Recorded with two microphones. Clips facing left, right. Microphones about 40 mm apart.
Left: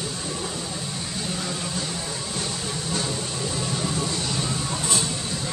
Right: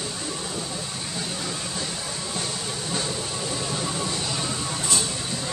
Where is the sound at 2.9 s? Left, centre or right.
Centre.